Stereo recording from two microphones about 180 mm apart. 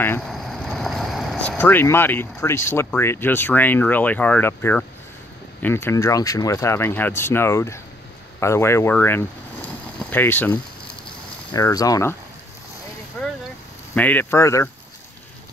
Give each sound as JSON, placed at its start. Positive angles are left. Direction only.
{"t": 0.3, "sound": "speech", "side_deg": 0}
{"t": 8.4, "sound": "a sound", "side_deg": 15}
{"t": 11.5, "sound": "speech", "side_deg": 20}
{"t": 13.2, "sound": "boat", "side_deg": 10}
{"t": 13.9, "sound": "speech", "side_deg": 10}